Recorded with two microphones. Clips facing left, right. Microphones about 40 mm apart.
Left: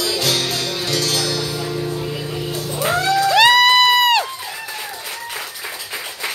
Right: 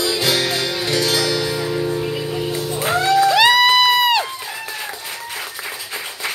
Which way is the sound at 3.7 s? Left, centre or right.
Centre.